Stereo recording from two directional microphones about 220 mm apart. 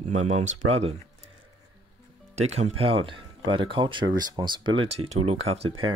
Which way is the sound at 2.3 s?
30° right (ahead or behind).